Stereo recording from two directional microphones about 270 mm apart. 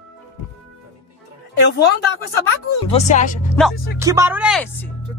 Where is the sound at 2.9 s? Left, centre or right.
Left.